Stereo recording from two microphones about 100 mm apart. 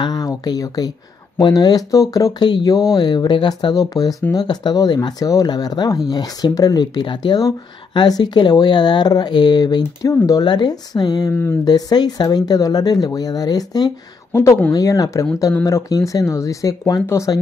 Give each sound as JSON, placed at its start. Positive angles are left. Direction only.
{"t": 0.0, "sound": "speech", "side_deg": 40}
{"t": 3.7, "sound": "speech", "side_deg": 35}
{"t": 14.3, "sound": "speech", "side_deg": 25}